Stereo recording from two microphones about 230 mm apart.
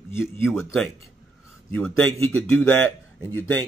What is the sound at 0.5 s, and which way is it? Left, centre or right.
Speech, centre.